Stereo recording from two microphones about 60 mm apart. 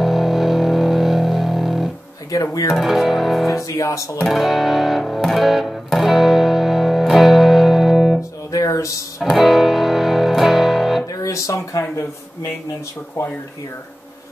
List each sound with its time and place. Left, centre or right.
0.0 s music: centre
3.6 s speech: left
4.3 s speech: centre
5.1 s music: centre
8.5 s music: left
9.2 s music: centre
11.2 s speech: left